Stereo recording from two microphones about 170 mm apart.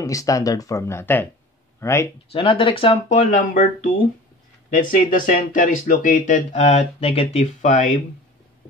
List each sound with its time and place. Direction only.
0.0 s speech: 20° left (ahead or behind)
2.3 s speech: 30° left (ahead or behind)
4.7 s speech: 50° left (ahead or behind)